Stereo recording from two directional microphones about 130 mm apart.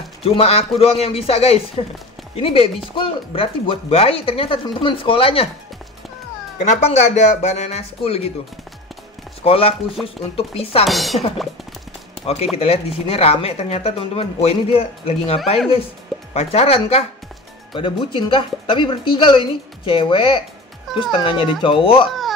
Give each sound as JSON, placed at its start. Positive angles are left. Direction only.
{"t": 0.2, "sound": "speech", "side_deg": 50}
{"t": 6.6, "sound": "speech", "side_deg": 65}
{"t": 9.4, "sound": "speech", "side_deg": 45}
{"t": 10.9, "sound": "speech", "side_deg": 0}
{"t": 12.5, "sound": "speech", "side_deg": 50}
{"t": 17.7, "sound": "a woman's voice", "side_deg": 40}
{"t": 20.9, "sound": "music", "side_deg": 0}
{"t": 21.2, "sound": "speech", "side_deg": 45}